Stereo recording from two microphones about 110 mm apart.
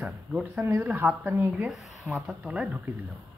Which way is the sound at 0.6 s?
25° right (ahead or behind).